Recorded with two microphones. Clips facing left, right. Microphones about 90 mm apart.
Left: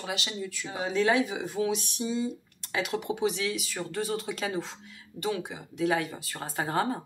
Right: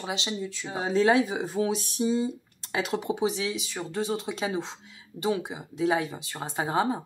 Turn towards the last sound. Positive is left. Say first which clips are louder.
# right 2 dB
turn(degrees=-15)  # may be behind; listen again after turning